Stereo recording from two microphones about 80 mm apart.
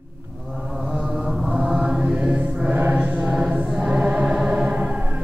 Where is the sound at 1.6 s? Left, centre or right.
Centre.